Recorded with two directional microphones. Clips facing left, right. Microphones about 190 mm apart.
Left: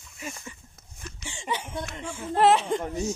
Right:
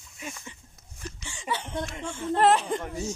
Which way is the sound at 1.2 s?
20° left (ahead or behind).